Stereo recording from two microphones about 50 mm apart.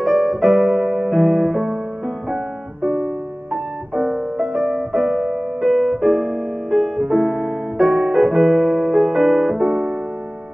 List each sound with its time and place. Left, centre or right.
0.0 s piano: centre
0.9 s music: centre
2.8 s music: centre
3.9 s piano: centre
5.6 s music: centre
5.9 s piano: centre